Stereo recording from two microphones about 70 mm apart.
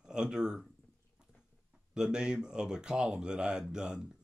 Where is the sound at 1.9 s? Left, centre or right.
Centre.